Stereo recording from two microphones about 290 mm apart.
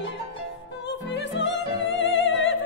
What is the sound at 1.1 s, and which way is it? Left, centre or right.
Opera, left.